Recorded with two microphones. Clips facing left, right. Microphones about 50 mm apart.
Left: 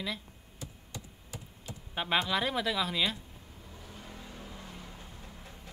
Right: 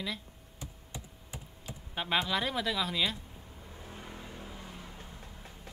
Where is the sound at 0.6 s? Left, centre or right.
Right.